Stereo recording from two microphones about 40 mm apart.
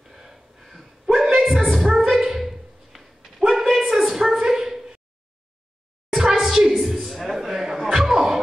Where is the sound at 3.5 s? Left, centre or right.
Centre.